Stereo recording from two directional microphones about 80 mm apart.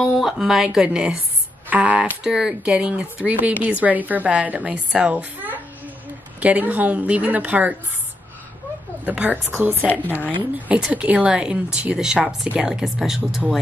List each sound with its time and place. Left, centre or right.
0.0 s a woman's voice: centre
9.0 s a woman's voice: centre
9.8 s speech: left
10.7 s speech: centre